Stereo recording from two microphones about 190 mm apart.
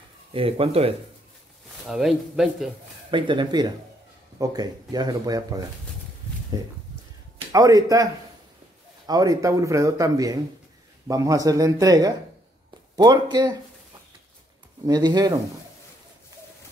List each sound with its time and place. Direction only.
0.3 s speech: 30° right (ahead or behind)
1.9 s speech: centre (ahead or behind)
3.1 s speech: 25° right (ahead or behind)
7.5 s a man's voice: 20° right (ahead or behind)
14.9 s speech: 20° right (ahead or behind)